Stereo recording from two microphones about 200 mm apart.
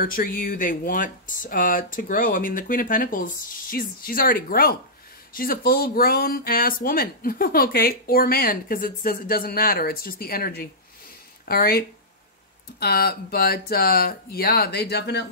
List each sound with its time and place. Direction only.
0.0 s speech: 45° left (ahead or behind)
12.8 s speech: 50° left (ahead or behind)